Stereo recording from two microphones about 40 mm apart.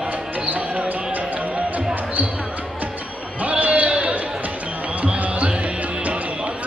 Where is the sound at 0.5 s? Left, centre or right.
Right.